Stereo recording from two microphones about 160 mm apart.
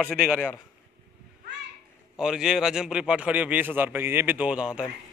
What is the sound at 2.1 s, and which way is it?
A man's voice, 5° right (ahead or behind).